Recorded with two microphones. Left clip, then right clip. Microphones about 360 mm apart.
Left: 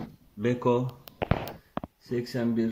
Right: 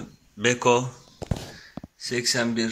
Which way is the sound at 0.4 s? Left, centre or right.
Right.